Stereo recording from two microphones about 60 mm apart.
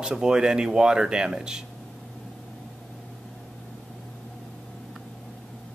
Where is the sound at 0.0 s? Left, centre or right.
Centre.